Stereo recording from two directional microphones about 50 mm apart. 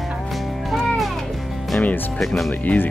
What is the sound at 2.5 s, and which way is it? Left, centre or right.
Speech, left.